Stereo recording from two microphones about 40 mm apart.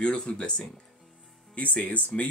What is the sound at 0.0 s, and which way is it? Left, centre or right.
Speech, left.